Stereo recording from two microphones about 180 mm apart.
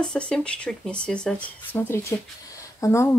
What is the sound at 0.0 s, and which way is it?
Speech, 5° left (ahead or behind).